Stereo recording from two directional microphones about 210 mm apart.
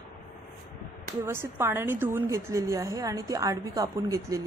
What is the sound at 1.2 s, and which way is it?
A woman's voice, 10° right (ahead or behind).